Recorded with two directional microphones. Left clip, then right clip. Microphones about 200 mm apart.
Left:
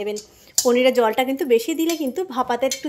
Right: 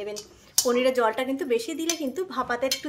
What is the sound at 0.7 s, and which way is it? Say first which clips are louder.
Speech: left 6 dB; 30° left (ahead or behind).